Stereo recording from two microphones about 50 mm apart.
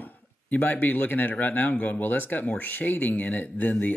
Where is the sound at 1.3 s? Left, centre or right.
Left.